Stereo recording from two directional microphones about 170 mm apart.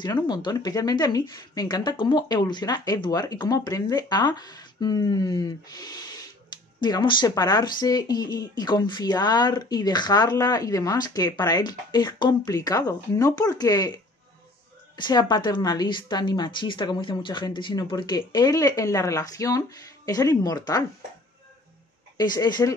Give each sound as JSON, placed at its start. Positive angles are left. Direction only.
{"t": 0.0, "sound": "speech", "side_deg": 25}
{"t": 22.1, "sound": "speech", "side_deg": 25}